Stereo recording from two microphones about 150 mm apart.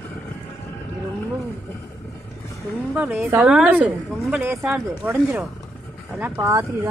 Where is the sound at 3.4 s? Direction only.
5° right (ahead or behind).